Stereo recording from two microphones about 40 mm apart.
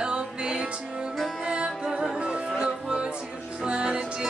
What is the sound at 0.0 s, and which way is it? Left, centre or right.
Music, right.